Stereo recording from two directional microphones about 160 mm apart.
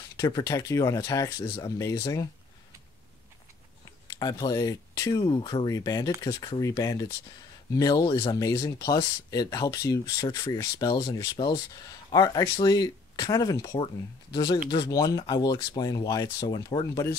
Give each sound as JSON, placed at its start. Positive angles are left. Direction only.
{"t": 0.2, "sound": "speech", "side_deg": 20}
{"t": 1.4, "sound": "speech", "side_deg": 30}
{"t": 1.8, "sound": "speech", "side_deg": 20}
{"t": 4.1, "sound": "speech", "side_deg": 25}